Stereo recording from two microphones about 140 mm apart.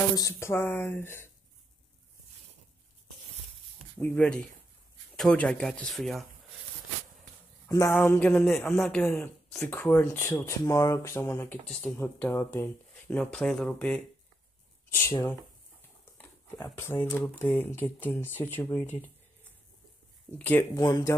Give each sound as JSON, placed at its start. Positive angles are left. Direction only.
{"t": 0.1, "sound": "speech", "side_deg": 20}
{"t": 4.0, "sound": "speech", "side_deg": 10}
{"t": 7.6, "sound": "speech", "side_deg": 20}
{"t": 11.6, "sound": "speech", "side_deg": 5}
{"t": 12.0, "sound": "speech", "side_deg": 15}
{"t": 15.0, "sound": "speech", "side_deg": 20}
{"t": 16.2, "sound": "dog", "side_deg": 15}
{"t": 16.6, "sound": "speech", "side_deg": 15}
{"t": 20.2, "sound": "speech", "side_deg": 15}
{"t": 20.7, "sound": "speech", "side_deg": 25}